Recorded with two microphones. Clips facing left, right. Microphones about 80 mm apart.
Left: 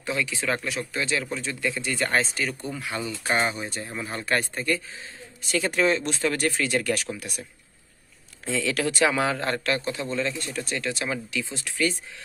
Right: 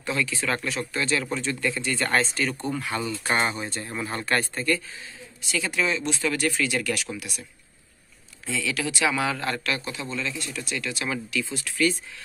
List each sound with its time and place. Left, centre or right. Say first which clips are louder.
0.0 s a man's voice: even; centre
5.4 s speech: left 3 dB; left
8.5 s speech: left 3 dB; left
9.1 s a man's voice: left 2 dB; left